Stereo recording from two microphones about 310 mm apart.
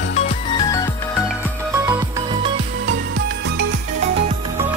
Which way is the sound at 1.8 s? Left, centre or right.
Centre.